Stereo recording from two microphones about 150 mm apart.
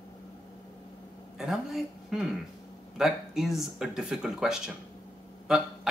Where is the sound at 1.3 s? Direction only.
Centre (ahead or behind).